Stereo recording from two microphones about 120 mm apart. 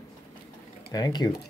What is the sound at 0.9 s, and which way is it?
Speech, 35° left (ahead or behind).